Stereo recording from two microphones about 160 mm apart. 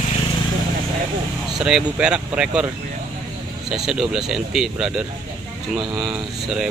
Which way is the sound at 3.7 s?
5° right (ahead or behind).